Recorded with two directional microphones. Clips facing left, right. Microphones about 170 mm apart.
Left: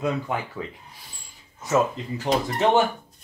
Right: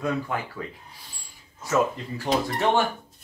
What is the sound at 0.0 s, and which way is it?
Speech, 20° left (ahead or behind).